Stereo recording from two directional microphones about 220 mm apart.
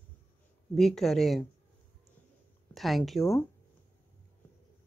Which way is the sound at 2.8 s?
Centre (ahead or behind).